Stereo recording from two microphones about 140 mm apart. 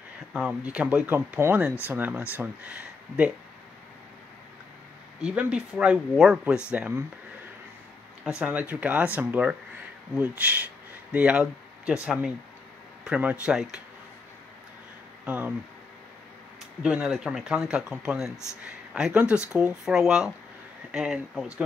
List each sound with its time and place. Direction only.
0.3 s speech: 10° right (ahead or behind)
5.2 s speech: 10° right (ahead or behind)
8.4 s speech: 10° right (ahead or behind)
15.2 s speech: 10° right (ahead or behind)
16.8 s speech: 5° right (ahead or behind)